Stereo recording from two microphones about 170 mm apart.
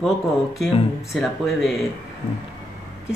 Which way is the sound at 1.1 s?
Centre (ahead or behind).